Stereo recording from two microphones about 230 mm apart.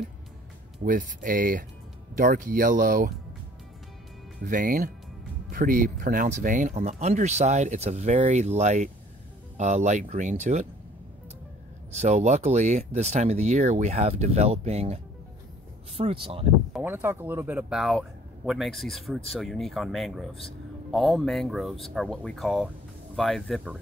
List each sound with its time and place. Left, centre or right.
0.8 s speech: right
4.4 s speech: right
11.9 s speech: right
16.0 s speech: right
16.7 s speech: centre